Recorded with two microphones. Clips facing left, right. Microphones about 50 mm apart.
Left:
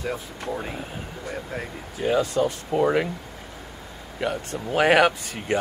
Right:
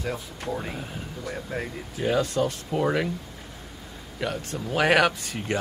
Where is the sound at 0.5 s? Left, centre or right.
Centre.